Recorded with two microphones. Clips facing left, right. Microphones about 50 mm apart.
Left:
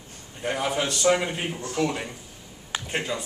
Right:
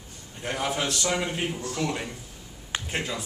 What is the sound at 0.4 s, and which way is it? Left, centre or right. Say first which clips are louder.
Speech: left 2 dB; centre.